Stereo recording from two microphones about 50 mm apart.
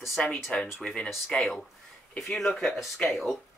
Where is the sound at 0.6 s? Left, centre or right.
Centre.